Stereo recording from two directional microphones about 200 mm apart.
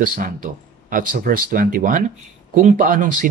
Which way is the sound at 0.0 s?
45° right (ahead or behind).